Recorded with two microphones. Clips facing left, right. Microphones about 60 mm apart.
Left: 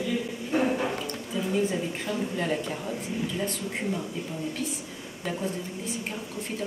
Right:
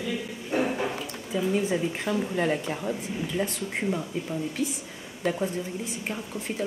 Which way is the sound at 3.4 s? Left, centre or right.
Centre.